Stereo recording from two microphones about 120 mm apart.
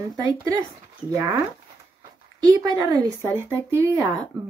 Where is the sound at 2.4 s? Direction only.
35° right (ahead or behind).